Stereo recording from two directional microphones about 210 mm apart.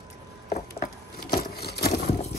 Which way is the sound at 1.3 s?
50° left (ahead or behind).